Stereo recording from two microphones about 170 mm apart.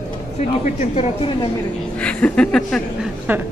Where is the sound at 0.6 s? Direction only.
45° left (ahead or behind).